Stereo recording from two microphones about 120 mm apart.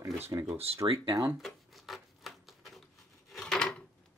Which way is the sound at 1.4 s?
Centre (ahead or behind).